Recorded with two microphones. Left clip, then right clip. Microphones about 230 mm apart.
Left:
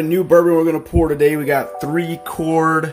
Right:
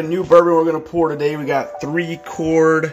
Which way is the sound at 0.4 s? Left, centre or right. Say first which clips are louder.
Right 1 dB; centre.